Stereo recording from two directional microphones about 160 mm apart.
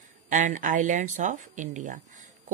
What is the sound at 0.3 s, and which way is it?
A woman's voice, 55° right (ahead or behind).